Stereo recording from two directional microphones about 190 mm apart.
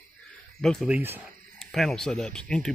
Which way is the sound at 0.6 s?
Centre (ahead or behind).